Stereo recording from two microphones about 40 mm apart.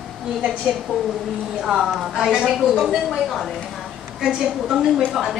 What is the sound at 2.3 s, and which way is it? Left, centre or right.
Speech, centre.